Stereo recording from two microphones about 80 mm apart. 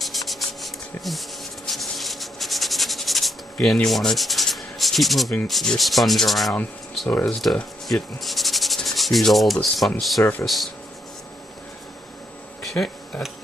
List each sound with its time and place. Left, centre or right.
0.0 s rub: centre
3.6 s sanding: centre
7.1 s speech: centre
7.5 s sanding: centre
12.6 s a sound: centre